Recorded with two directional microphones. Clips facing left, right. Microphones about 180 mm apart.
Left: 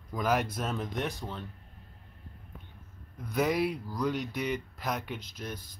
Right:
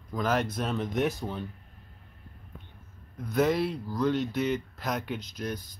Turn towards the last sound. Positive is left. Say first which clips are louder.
# right 5 dB
turn(degrees=5)  # may be behind; listen again after turning